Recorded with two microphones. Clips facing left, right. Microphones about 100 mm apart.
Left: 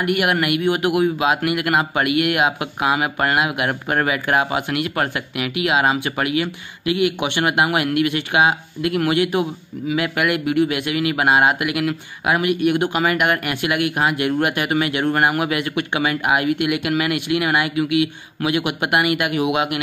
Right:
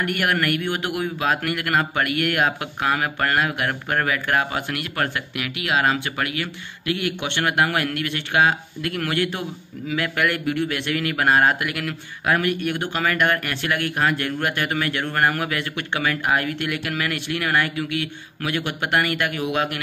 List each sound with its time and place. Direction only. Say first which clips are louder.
0.0 s speech: left 3 dB; 10° left (ahead or behind)